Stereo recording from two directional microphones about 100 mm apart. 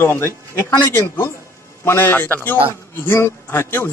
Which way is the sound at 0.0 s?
25° left (ahead or behind).